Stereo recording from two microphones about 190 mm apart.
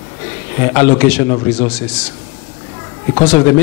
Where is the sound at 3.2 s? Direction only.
10° left (ahead or behind).